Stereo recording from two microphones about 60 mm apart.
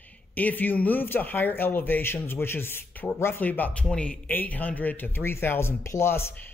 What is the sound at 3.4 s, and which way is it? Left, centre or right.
Speech, left.